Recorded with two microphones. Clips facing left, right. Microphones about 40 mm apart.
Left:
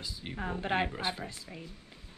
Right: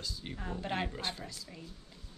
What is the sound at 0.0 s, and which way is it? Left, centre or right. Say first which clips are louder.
Speech: left 4 dB; centre.